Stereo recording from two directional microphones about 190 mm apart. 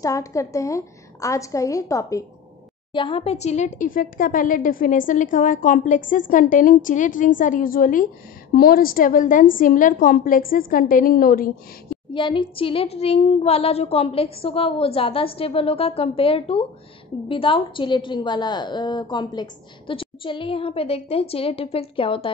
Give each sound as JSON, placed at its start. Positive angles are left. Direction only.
{"t": 0.0, "sound": "a woman's voice", "side_deg": 15}
{"t": 2.9, "sound": "speech", "side_deg": 25}
{"t": 12.1, "sound": "a woman's voice", "side_deg": 25}